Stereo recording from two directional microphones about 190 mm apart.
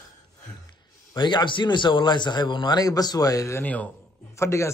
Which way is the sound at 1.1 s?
25° left (ahead or behind).